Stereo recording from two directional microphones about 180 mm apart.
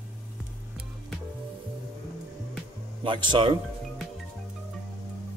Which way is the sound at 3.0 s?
25° right (ahead or behind).